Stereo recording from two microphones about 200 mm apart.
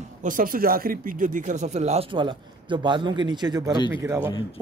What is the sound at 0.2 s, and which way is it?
Speech, 45° right (ahead or behind).